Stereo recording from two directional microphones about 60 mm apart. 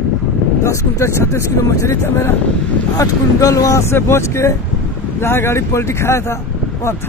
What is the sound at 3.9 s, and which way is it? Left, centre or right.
Speech, left.